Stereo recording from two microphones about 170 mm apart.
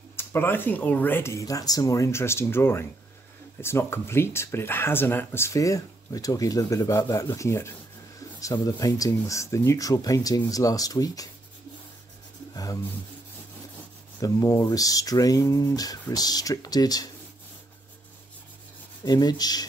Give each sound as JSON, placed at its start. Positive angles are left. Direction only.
{"t": 0.1, "sound": "speech", "side_deg": 15}
{"t": 14.2, "sound": "speech", "side_deg": 20}
{"t": 19.0, "sound": "speech", "side_deg": 25}